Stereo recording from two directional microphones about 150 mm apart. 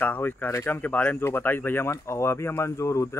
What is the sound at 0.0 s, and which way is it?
Speech, 10° left (ahead or behind).